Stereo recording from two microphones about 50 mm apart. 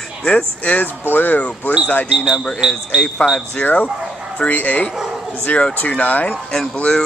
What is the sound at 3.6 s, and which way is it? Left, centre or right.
Speech, left.